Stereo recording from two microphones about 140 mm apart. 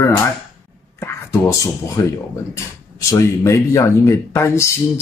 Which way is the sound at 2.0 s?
25° left (ahead or behind).